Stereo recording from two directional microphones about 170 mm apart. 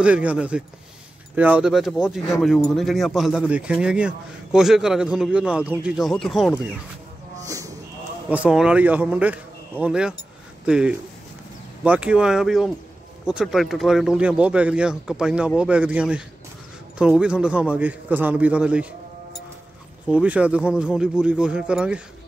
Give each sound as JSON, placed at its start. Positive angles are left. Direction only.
{"t": 0.0, "sound": "speech", "side_deg": -5}
{"t": 7.4, "sound": "a sound", "side_deg": -20}
{"t": 8.3, "sound": "speech", "side_deg": -5}
{"t": 20.1, "sound": "speech", "side_deg": -5}